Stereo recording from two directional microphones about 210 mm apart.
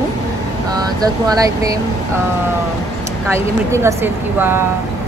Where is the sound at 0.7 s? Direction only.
20° right (ahead or behind).